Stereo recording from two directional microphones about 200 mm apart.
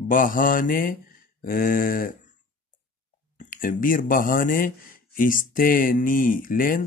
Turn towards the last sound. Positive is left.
turn(degrees=45)  # may be behind; listen again after turning